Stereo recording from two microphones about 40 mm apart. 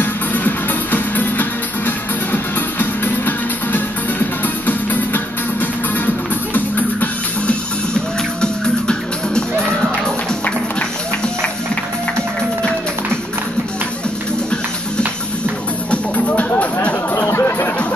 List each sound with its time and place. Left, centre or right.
0.0 s music: left
7.4 s music: left
15.9 s music: left
17.2 s music: left